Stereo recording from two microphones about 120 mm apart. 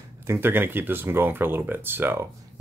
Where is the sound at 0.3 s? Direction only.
20° right (ahead or behind).